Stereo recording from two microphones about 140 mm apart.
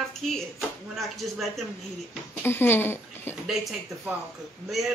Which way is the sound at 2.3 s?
15° left (ahead or behind).